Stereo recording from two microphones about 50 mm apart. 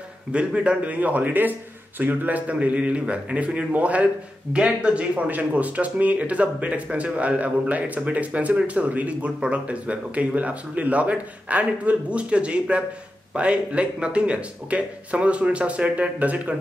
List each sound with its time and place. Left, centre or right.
0.3 s a man's voice: right